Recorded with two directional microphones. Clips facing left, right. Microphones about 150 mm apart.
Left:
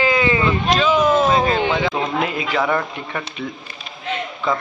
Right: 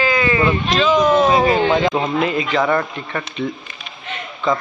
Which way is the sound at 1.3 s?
15° right (ahead or behind).